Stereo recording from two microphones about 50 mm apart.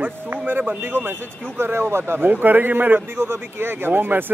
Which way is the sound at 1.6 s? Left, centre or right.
Right.